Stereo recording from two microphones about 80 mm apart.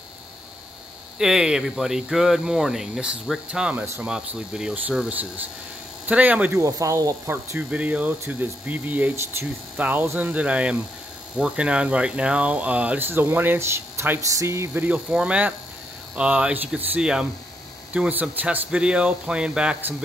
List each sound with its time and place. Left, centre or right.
1.1 s speech: centre
6.0 s speech: centre
6.5 s speech: right
7.2 s speech: centre; by 14.7 s right
14.7 s speech: centre